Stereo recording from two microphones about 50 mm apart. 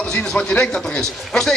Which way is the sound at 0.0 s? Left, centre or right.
Centre.